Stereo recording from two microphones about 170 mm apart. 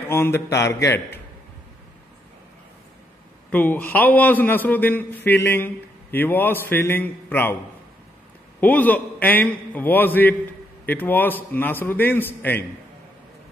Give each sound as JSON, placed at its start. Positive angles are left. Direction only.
{"t": 0.1, "sound": "a man's voice", "side_deg": 15}
{"t": 3.4, "sound": "a man's voice", "side_deg": 10}
{"t": 8.5, "sound": "a man's voice", "side_deg": 10}